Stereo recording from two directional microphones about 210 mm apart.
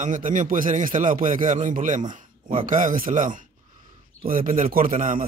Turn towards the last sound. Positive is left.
turn(degrees=-40)  # may be behind; listen again after turning